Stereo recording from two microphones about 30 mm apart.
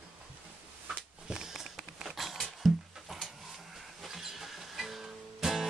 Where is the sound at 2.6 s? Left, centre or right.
Centre.